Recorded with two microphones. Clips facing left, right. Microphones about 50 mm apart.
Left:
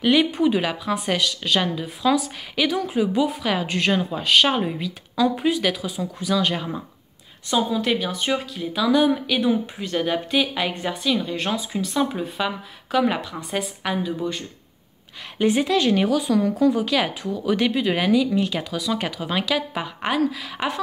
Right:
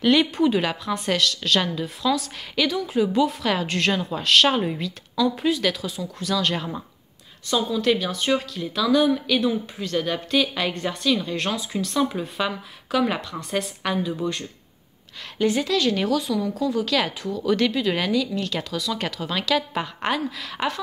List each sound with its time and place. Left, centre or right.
0.0 s speech: centre
15.3 s a woman's voice: left
16.3 s speech: left
16.7 s a woman's voice: centre